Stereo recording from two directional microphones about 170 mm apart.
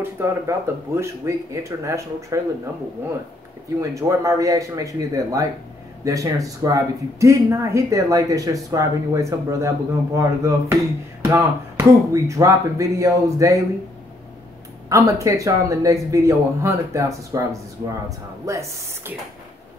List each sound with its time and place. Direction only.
0.0 s speech: 15° right (ahead or behind)
3.9 s speech: 20° right (ahead or behind)
14.9 s speech: 20° right (ahead or behind)